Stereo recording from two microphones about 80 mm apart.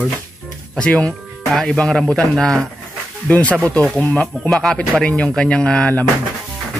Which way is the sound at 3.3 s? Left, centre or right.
Centre.